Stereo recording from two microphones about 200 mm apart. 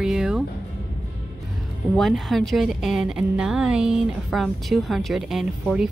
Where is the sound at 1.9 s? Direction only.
Centre (ahead or behind).